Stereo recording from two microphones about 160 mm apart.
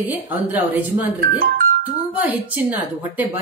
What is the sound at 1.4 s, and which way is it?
Speech, 65° right (ahead or behind).